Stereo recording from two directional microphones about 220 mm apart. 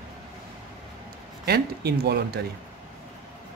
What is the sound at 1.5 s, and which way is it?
Speech, 45° right (ahead or behind).